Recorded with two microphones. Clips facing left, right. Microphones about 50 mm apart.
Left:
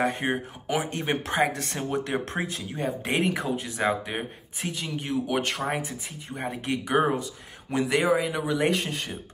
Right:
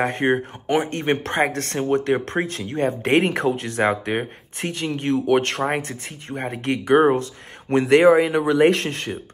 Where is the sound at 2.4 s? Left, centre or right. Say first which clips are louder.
Right 7 dB; right.